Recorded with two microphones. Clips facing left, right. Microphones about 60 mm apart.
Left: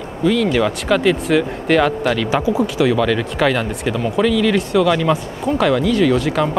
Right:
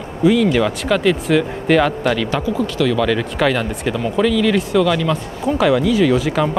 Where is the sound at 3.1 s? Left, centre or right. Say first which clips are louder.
Even; centre.